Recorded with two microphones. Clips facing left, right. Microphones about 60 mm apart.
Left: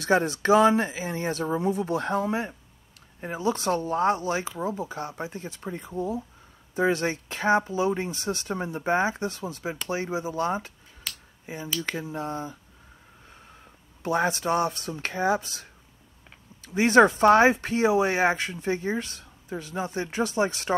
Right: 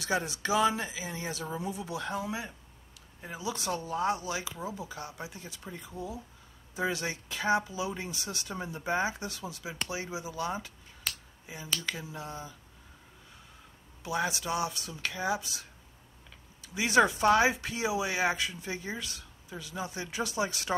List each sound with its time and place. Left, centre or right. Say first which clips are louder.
0.0 s speech: left 9 dB; left
14.0 s speech: left 7 dB; left